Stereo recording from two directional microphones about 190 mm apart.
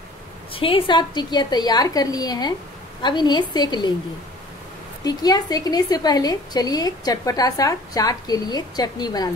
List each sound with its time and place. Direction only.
0.5 s a woman's voice: 30° left (ahead or behind)
5.0 s a woman's voice: 20° left (ahead or behind)